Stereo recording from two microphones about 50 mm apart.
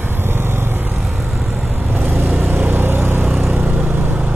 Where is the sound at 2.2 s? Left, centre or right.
Right.